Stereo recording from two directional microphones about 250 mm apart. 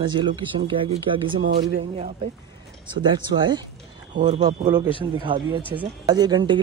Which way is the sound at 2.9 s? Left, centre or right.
Centre.